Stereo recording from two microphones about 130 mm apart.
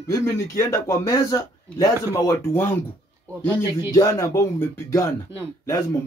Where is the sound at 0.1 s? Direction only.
25° left (ahead or behind).